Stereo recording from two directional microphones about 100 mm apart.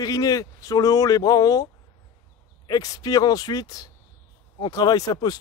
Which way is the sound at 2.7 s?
40° left (ahead or behind).